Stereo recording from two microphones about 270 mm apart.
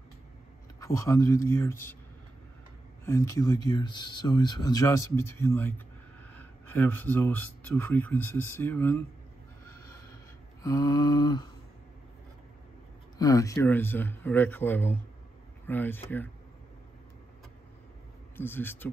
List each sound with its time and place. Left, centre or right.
0.7 s speech: centre
3.1 s speech: centre
10.6 s speech: centre
13.2 s speech: centre
18.3 s speech: centre